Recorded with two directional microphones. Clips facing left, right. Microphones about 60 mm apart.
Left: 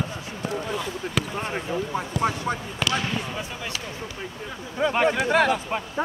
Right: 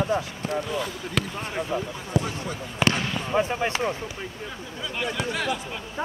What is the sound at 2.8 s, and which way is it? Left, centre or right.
Speech, centre.